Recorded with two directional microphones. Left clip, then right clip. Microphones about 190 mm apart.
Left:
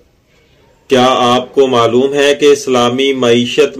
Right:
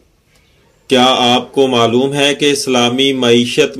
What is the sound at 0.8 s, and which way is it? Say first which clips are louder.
Speech: left 1 dB; 55° right (ahead or behind).